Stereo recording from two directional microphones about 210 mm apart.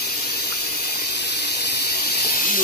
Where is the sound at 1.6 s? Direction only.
50° left (ahead or behind).